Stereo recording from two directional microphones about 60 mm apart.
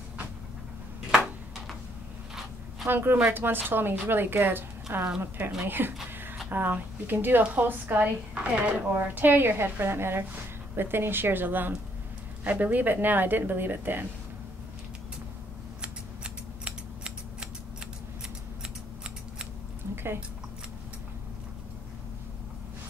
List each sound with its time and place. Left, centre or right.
2.9 s a woman's voice: right
8.4 s speech: centre
8.9 s a woman's voice: right
16.6 s scissors: centre